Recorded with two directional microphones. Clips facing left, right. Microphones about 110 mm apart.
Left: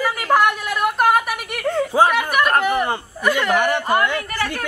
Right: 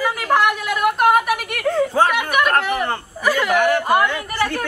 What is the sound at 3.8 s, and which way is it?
Speech, 15° right (ahead or behind).